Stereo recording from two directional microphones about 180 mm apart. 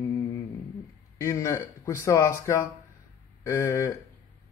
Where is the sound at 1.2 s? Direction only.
15° left (ahead or behind).